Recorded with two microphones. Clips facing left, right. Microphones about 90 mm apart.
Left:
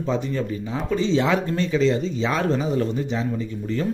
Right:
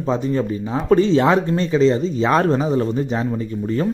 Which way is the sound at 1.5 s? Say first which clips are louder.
Right 4 dB; 35° right (ahead or behind).